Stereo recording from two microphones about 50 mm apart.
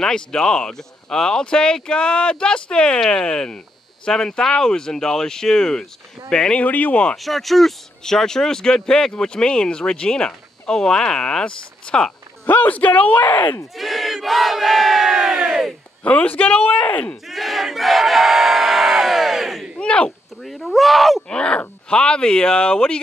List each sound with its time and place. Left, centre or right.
0.0 s speech: centre
6.6 s speech: left
7.2 s speech: centre
12.4 s speech: left
13.7 s crowd: centre
16.0 s speech: left
17.3 s crowd: centre
19.8 s a sound: centre
20.4 s a sound: centre
21.3 s speech: centre